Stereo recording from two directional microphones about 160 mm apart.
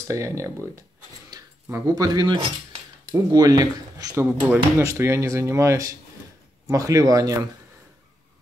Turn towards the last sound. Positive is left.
turn(degrees=-20)  # may be behind; listen again after turning